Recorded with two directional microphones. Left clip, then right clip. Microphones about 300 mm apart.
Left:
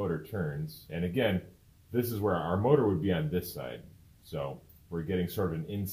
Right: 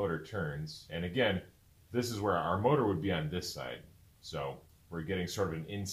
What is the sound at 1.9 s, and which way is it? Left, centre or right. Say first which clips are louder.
Speech: left 2 dB; centre.